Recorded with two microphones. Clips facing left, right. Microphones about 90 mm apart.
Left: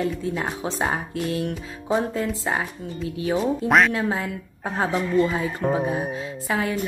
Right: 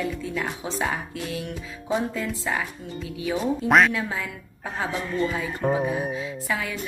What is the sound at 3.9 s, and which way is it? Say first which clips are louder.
Speech: left 4 dB; 35° left (ahead or behind).